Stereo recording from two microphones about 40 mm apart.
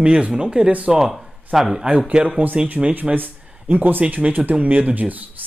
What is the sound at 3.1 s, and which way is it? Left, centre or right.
Speech, right.